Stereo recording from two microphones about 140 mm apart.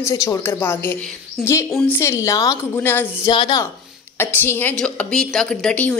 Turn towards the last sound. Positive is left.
turn(degrees=10)  # may be behind; listen again after turning